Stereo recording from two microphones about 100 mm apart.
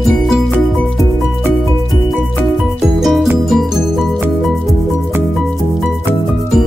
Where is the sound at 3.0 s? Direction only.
Centre (ahead or behind).